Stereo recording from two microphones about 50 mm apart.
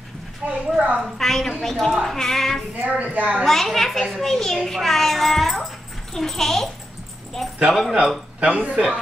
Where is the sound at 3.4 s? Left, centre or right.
Centre.